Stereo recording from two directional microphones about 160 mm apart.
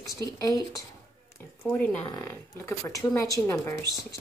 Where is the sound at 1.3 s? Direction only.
15° left (ahead or behind).